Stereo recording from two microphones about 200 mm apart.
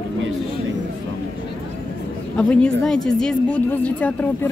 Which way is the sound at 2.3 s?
5° left (ahead or behind).